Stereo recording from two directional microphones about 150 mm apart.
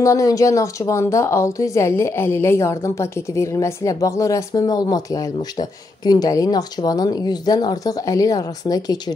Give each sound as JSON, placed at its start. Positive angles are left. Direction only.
{"t": 0.0, "sound": "a woman's voice", "side_deg": 20}